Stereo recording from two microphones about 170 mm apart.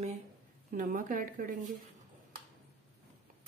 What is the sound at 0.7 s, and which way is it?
Speech, 55° right (ahead or behind).